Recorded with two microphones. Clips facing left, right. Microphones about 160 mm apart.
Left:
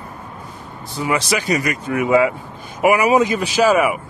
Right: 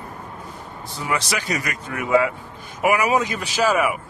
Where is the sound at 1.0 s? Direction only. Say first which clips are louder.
Left 5 dB; 10° left (ahead or behind).